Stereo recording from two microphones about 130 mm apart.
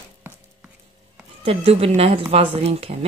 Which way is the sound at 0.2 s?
20° right (ahead or behind).